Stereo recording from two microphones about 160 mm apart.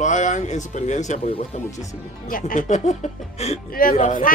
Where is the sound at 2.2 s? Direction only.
55° left (ahead or behind).